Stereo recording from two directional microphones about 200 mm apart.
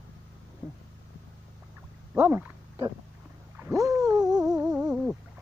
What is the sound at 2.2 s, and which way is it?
Roaring cats, 10° right (ahead or behind).